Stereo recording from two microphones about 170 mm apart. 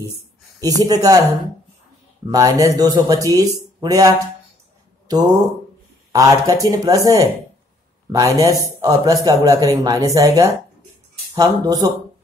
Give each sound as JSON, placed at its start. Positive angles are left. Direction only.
{"t": 0.6, "sound": "speech", "side_deg": -20}
{"t": 2.3, "sound": "speech", "side_deg": -20}